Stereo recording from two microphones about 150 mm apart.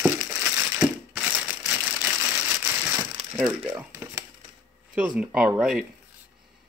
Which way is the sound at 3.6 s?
15° right (ahead or behind).